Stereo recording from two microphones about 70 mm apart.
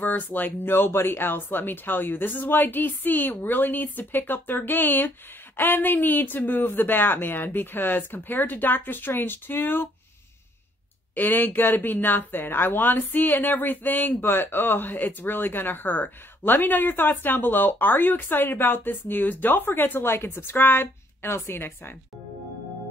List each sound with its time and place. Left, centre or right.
0.0 s speech: left
11.1 s speech: left